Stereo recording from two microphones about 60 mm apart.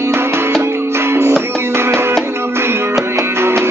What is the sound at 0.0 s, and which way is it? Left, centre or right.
Music, right.